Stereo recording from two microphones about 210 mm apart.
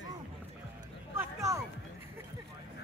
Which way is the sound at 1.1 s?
15° right (ahead or behind).